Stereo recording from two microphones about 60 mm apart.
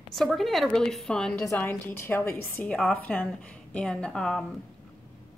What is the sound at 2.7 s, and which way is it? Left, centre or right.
A woman's voice, centre.